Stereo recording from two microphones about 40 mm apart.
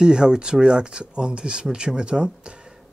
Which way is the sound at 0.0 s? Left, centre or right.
Centre.